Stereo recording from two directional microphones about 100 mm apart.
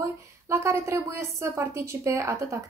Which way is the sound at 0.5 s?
30° right (ahead or behind).